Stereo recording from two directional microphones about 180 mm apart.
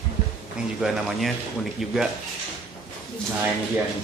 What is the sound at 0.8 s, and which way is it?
Speech, centre (ahead or behind).